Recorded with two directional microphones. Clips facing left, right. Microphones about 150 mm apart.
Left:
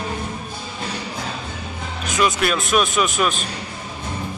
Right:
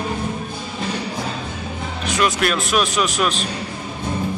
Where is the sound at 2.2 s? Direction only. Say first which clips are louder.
Even; centre (ahead or behind).